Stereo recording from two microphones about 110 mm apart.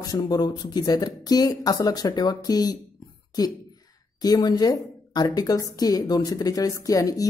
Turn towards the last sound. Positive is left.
turn(degrees=30)  # may be behind; listen again after turning